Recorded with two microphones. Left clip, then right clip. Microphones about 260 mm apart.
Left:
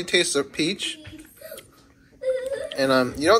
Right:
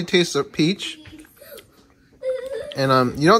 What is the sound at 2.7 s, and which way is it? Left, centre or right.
Speech, right.